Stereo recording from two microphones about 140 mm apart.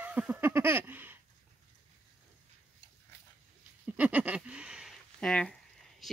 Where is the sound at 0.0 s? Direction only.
10° right (ahead or behind).